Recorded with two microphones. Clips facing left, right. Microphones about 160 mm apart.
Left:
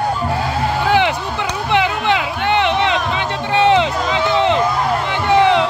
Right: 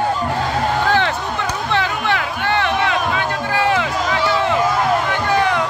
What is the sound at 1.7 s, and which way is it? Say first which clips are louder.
Music: left 5 dB; 15° left (ahead or behind).